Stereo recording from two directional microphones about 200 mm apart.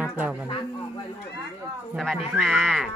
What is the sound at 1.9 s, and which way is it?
Speech, centre (ahead or behind).